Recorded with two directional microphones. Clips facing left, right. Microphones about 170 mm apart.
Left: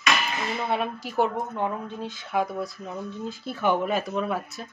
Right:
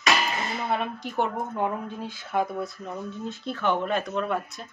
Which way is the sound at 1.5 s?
10° right (ahead or behind).